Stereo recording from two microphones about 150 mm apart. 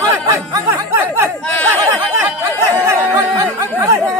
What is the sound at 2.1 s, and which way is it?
Chatter, 15° right (ahead or behind).